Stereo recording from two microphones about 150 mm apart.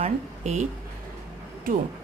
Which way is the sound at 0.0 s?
50° right (ahead or behind).